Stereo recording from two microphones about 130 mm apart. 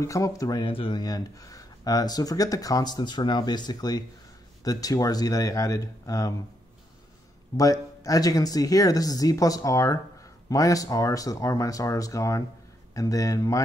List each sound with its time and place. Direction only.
0.0 s speech: 25° left (ahead or behind)
0.7 s speech: 40° left (ahead or behind); by 6.3 s 25° left (ahead or behind)
7.5 s speech: 25° left (ahead or behind)